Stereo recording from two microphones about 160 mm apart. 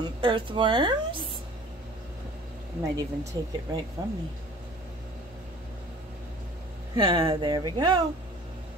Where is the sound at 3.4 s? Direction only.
25° right (ahead or behind).